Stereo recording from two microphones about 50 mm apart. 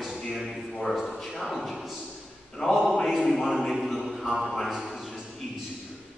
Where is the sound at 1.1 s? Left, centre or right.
Centre.